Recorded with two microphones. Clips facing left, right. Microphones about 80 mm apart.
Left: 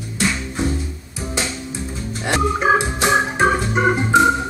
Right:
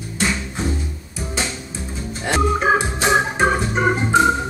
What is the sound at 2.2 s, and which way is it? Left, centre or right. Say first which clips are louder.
Organ: even; centre.